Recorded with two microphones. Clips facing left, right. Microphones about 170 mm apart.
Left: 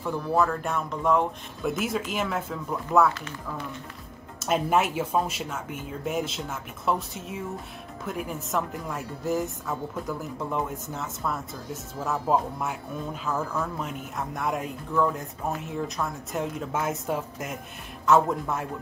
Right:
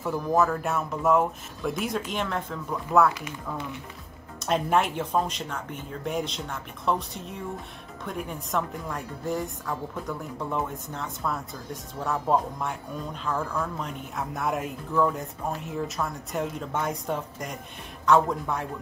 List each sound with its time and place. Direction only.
0.0 s a woman's voice: 10° right (ahead or behind)
3.2 s speech: 15° right (ahead or behind)
4.4 s a woman's voice: 5° left (ahead or behind)